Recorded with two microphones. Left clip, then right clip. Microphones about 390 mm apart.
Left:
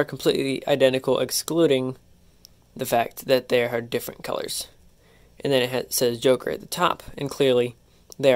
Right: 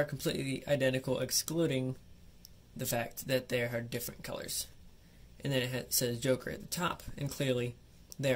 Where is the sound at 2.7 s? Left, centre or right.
Centre.